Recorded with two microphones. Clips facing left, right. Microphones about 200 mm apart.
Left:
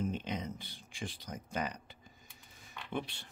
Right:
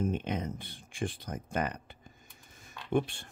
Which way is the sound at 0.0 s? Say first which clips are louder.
Right 5 dB; 55° right (ahead or behind).